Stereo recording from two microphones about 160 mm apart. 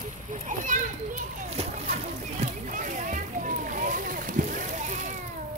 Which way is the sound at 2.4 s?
50° right (ahead or behind).